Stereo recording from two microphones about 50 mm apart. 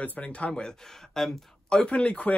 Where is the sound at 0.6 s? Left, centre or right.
Centre.